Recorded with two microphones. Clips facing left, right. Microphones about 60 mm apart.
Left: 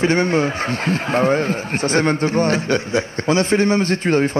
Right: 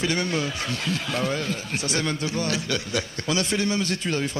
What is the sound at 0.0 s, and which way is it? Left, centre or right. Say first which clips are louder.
A man's voice: left 9 dB; left.